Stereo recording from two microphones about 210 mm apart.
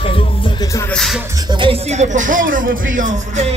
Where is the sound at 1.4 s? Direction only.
20° right (ahead or behind).